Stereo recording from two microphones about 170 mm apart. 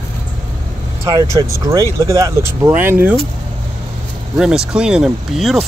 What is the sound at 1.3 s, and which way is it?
Speech, 20° right (ahead or behind).